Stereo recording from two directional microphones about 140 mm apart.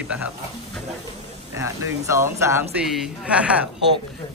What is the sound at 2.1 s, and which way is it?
Speech, 20° right (ahead or behind).